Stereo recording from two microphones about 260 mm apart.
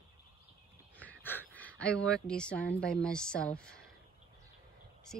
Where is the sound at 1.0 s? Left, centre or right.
Centre.